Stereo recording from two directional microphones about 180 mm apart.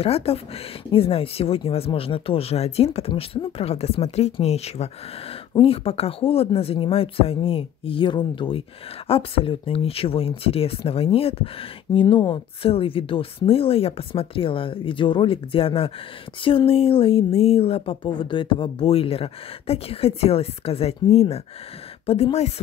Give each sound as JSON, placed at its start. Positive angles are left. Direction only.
{"t": 0.0, "sound": "speech", "side_deg": 35}